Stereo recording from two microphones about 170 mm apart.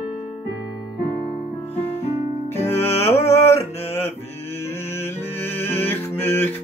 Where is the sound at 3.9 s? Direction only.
15° left (ahead or behind).